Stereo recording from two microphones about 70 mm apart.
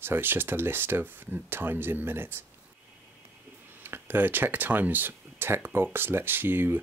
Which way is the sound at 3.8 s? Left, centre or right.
Right.